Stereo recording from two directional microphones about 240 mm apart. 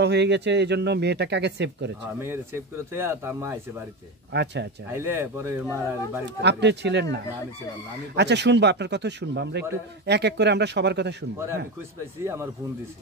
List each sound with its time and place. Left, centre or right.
0.0 s speech: right
2.9 s speech: centre
4.3 s speech: right
4.9 s speech: centre
6.2 s speech: right
8.2 s speech: right